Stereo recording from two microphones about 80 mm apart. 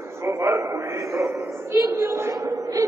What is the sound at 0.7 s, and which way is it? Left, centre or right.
Music, right.